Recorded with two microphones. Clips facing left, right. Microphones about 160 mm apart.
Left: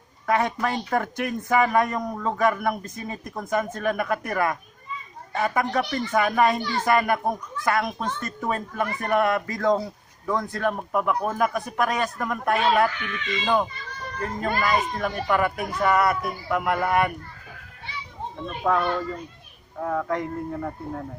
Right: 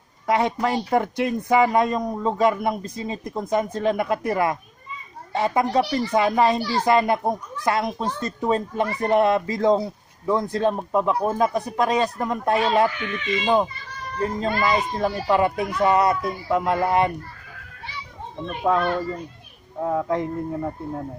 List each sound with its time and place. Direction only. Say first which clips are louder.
0.3 s speech: right 2 dB; 20° right (ahead or behind)
5.7 s speech: right 4 dB; 30° right (ahead or behind)
6.1 s speech: right 2 dB; 20° right (ahead or behind)
14.9 s speech: right 3 dB; 25° right (ahead or behind)
18.5 s a child's voice: right 2 dB; 15° right (ahead or behind)